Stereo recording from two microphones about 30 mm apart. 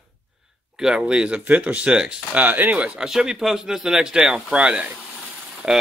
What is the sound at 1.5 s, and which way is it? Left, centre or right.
Speech, right.